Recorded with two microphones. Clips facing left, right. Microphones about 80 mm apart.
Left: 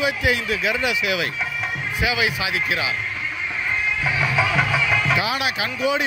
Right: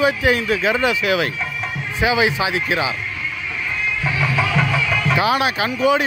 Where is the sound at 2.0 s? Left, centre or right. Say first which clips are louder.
Right 6 dB; right.